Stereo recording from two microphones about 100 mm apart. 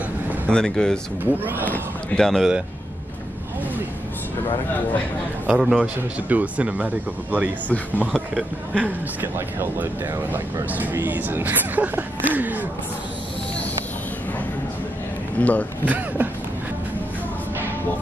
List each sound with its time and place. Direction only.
0.5 s speech: 5° left (ahead or behind)
1.2 s speech: 20° right (ahead or behind)
1.7 s speech: 5° left (ahead or behind)
5.5 s a man's voice: 5° right (ahead or behind)
6.2 s speech: 15° right (ahead or behind)
7.6 s speech: 15° left (ahead or behind)
8.1 s a man's voice: centre (ahead or behind)
8.8 s speech: 20° right (ahead or behind)
15.4 s speech: 15° left (ahead or behind)
15.8 s speech: 15° right (ahead or behind)